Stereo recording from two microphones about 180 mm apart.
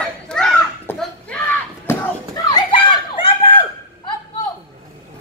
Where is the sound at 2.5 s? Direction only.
30° left (ahead or behind).